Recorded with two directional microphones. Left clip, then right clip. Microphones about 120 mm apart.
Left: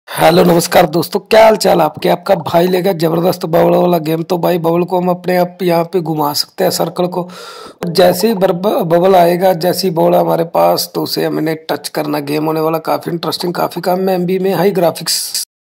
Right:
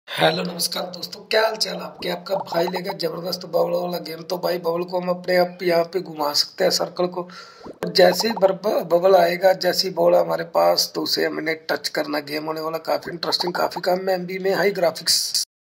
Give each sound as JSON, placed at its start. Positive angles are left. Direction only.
{"t": 0.2, "sound": "speech", "side_deg": 60}